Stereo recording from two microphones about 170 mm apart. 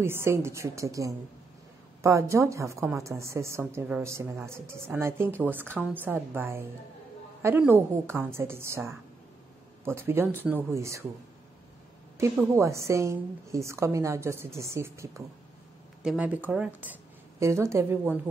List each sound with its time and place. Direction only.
0.0 s a woman's voice: 15° right (ahead or behind)
12.2 s a woman's voice: 15° right (ahead or behind)